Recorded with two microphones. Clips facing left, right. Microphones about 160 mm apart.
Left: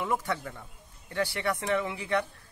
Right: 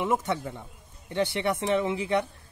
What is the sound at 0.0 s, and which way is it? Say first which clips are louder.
Speech: right 3 dB; 20° right (ahead or behind).